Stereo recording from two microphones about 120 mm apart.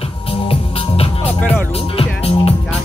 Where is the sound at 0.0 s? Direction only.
50° left (ahead or behind).